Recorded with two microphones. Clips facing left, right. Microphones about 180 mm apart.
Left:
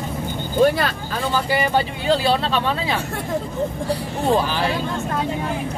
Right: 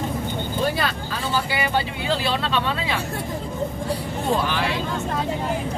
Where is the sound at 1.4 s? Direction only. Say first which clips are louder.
Left 4 dB; 40° left (ahead or behind).